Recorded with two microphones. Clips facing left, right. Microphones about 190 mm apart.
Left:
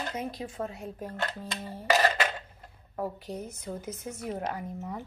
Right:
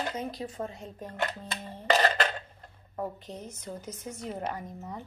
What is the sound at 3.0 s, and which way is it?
A woman's voice, 10° left (ahead or behind).